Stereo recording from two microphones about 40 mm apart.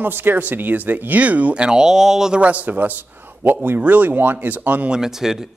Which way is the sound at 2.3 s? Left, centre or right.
Right.